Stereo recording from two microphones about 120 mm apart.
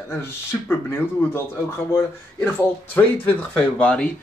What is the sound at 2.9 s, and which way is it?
Speech, 15° left (ahead or behind).